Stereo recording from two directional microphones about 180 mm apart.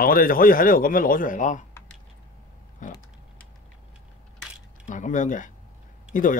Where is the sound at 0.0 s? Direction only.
55° left (ahead or behind).